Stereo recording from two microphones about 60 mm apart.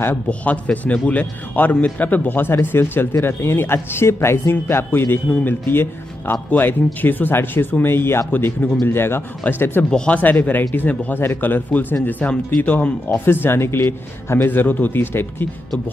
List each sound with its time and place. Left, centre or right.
0.3 s a man's voice: left
9.8 s speech: centre
10.1 s speech: left